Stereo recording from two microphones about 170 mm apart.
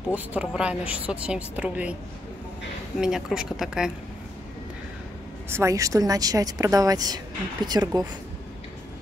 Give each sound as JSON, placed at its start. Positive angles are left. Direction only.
{"t": 0.1, "sound": "a woman's voice", "side_deg": -5}
{"t": 3.0, "sound": "speech", "side_deg": -5}
{"t": 5.5, "sound": "speech", "side_deg": -15}